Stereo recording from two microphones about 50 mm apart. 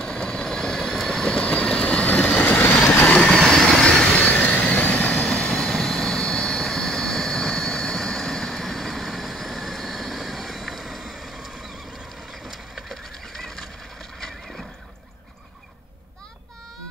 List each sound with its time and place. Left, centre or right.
0.0 s vehicle: centre
2.4 s vehicle: left
3.3 s vehicle: centre
3.8 s vehicle: centre
4.2 s vehicle: left
5.5 s vehicle: centre
12.3 s wood: centre
12.9 s a sound: centre
14.2 s neigh: centre